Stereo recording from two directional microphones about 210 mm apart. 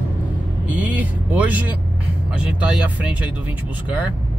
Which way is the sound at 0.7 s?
10° right (ahead or behind).